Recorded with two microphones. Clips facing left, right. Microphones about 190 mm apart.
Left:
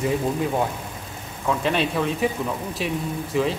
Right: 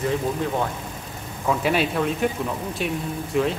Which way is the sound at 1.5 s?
5° right (ahead or behind).